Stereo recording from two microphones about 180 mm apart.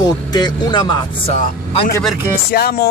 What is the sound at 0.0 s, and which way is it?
Speech, 25° left (ahead or behind).